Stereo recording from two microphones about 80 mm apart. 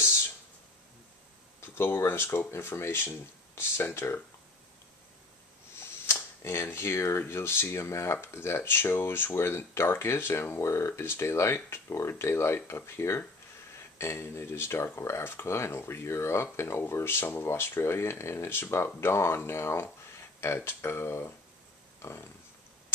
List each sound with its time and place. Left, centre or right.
1.6 s speech: left
5.8 s speech: left